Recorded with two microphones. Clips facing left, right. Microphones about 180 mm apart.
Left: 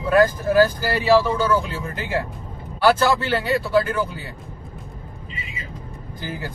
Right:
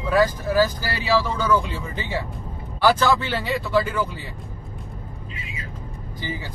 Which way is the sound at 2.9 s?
5° left (ahead or behind).